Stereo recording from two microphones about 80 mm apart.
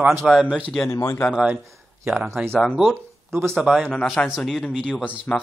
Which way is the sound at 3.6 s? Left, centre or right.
Centre.